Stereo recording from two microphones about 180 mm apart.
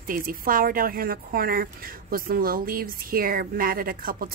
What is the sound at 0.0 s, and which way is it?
Speech, 50° right (ahead or behind).